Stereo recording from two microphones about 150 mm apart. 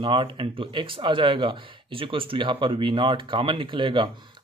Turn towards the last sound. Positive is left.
turn(degrees=-30)  # may be behind; listen again after turning